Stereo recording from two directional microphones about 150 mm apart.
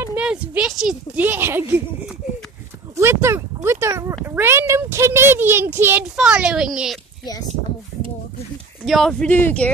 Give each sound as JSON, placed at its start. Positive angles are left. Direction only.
{"t": 0.0, "sound": "speech", "side_deg": -10}
{"t": 3.0, "sound": "a sound", "side_deg": -15}
{"t": 4.4, "sound": "a child's voice", "side_deg": -15}
{"t": 8.8, "sound": "speech", "side_deg": 0}